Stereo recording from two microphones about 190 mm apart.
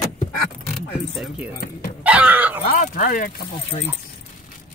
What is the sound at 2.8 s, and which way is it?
Speech, 45° left (ahead or behind).